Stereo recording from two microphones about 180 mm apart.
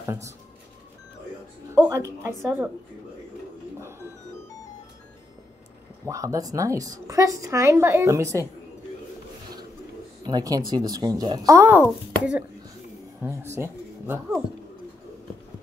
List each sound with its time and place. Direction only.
0.0 s speech: 15° right (ahead or behind)
1.8 s a woman's voice: 15° right (ahead or behind)
6.0 s speech: 15° right (ahead or behind)
10.2 s speech: 20° right (ahead or behind)
13.6 s speech: 15° right (ahead or behind)